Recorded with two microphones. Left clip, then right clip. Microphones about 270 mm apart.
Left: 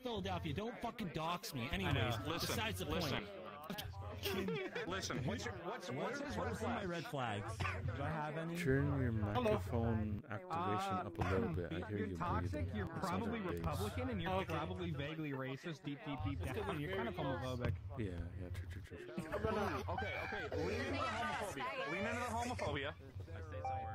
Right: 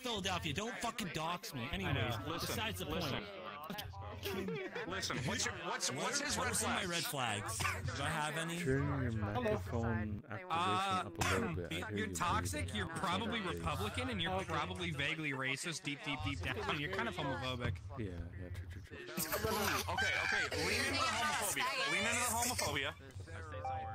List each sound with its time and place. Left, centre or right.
0.0 s speech: right
1.2 s speech: centre
4.9 s speech: centre
5.2 s a man's voice: right
6.6 s speech: right
8.5 s speech: centre
10.5 s a man's voice: right
19.5 s speech: right